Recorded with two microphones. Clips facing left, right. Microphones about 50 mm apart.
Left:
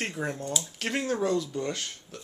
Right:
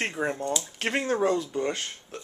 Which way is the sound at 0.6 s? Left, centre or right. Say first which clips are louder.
Even; right.